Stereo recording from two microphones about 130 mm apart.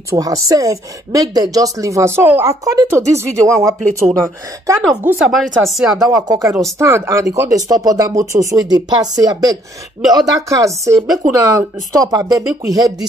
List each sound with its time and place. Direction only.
0.1 s a woman's voice: 25° right (ahead or behind)
5.2 s speech: centre (ahead or behind)
5.9 s a woman's voice: 30° right (ahead or behind)